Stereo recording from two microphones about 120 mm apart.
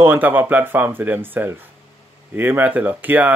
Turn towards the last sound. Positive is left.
turn(degrees=-15)  # may be behind; listen again after turning